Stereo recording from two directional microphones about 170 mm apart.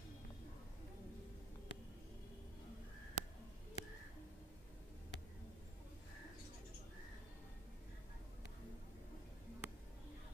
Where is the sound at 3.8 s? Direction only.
40° left (ahead or behind).